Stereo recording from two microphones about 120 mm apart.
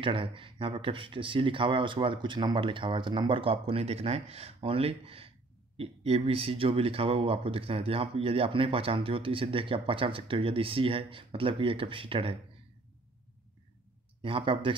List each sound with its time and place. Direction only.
0.0 s speech: 50° right (ahead or behind)
14.2 s speech: 45° right (ahead or behind)